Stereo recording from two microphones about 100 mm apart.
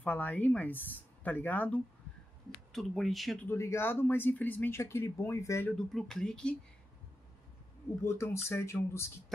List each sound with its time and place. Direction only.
0.0 s speech: 15° left (ahead or behind)
2.7 s speech: centre (ahead or behind)
3.4 s speech: 25° left (ahead or behind)
5.7 s speech: 5° left (ahead or behind)
8.0 s speech: 25° left (ahead or behind)